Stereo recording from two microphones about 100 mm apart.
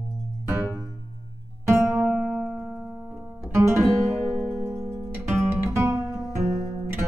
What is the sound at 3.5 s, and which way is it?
Music, 25° right (ahead or behind).